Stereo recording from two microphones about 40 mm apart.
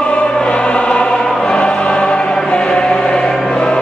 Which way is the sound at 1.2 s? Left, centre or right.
Centre.